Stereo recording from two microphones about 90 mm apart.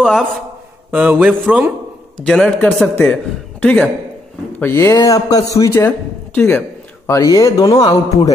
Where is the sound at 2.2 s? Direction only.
10° left (ahead or behind).